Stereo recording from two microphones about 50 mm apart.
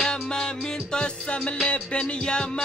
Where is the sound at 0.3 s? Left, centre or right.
Centre.